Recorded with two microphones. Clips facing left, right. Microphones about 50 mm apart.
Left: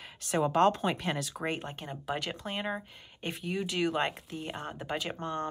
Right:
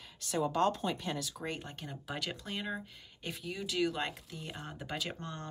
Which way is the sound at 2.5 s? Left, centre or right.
Left.